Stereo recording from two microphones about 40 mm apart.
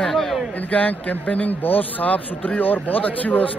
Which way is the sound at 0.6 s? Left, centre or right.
Left.